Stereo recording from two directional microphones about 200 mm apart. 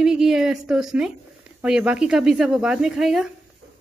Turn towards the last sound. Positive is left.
turn(degrees=0)  # may be behind; listen again after turning